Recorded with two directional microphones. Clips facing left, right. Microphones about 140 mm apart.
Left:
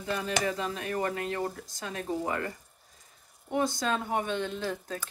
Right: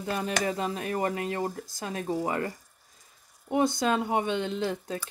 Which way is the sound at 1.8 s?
30° right (ahead or behind).